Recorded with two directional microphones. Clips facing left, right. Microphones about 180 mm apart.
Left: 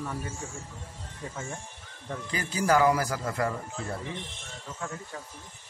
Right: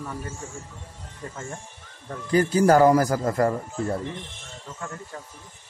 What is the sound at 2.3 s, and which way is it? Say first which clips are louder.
Speech: right 8 dB; 45° right (ahead or behind).